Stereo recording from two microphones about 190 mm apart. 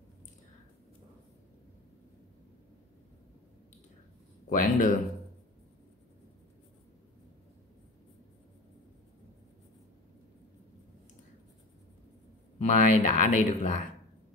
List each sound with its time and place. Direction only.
4.5 s speech: 45° left (ahead or behind)
12.5 s speech: 35° left (ahead or behind)